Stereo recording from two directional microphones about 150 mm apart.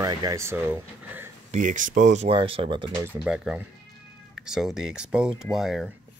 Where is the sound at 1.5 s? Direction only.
60° right (ahead or behind); by 2.9 s 35° right (ahead or behind).